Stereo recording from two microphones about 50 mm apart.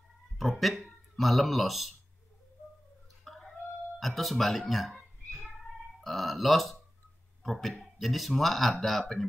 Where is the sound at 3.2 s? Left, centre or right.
Centre.